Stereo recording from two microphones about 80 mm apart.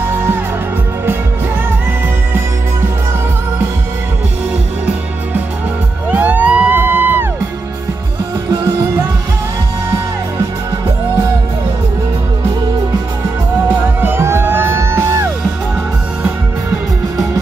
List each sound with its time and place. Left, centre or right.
6.0 s music: right
13.7 s music: right